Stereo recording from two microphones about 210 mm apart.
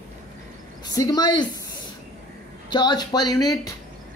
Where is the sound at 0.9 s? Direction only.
15° left (ahead or behind).